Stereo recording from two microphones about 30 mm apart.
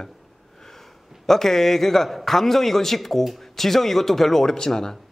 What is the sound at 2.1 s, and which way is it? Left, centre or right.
A woman's voice, centre.